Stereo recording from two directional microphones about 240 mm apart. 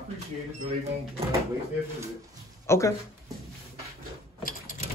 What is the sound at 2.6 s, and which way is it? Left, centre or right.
Speech, centre.